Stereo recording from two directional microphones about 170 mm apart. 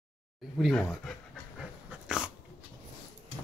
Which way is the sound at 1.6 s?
5° right (ahead or behind).